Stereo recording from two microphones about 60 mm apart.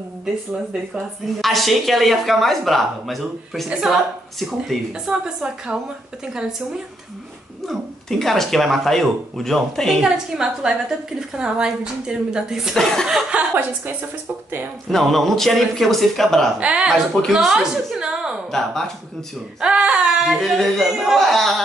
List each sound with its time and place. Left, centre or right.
1.4 s a woman's voice: centre
7.6 s speech: centre
10.0 s a woman's voice: centre
14.9 s speech: centre
16.5 s speech: centre
16.9 s speech: centre
17.3 s a woman's voice: centre
18.5 s speech: centre
19.6 s a sound: centre
20.5 s speech: centre